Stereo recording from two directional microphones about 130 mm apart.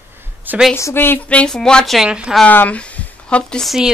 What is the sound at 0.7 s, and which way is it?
A woman's voice, 20° left (ahead or behind).